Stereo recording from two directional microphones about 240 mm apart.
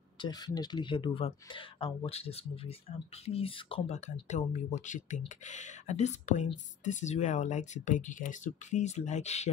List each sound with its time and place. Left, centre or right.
0.2 s speech: centre